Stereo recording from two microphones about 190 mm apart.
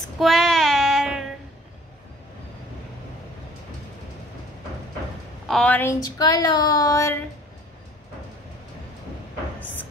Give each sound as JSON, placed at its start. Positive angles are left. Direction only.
{"t": 0.2, "sound": "child singing", "side_deg": 0}
{"t": 5.5, "sound": "speech", "side_deg": 5}